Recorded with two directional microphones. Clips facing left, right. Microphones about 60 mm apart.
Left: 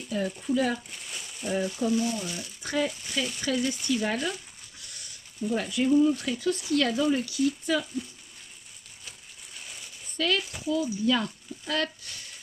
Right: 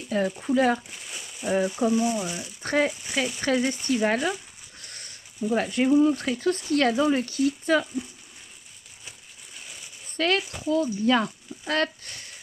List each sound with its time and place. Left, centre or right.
0.1 s speech: right
0.7 s speech: centre
1.8 s speech: right
2.6 s speech: right
2.9 s speech: centre
3.3 s speech: right
4.7 s a sound: right
5.5 s speech: right
7.8 s speech: right
9.6 s a sound: centre
10.1 s speech: right